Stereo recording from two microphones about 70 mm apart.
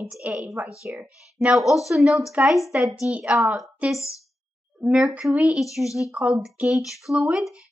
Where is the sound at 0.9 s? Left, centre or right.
Centre.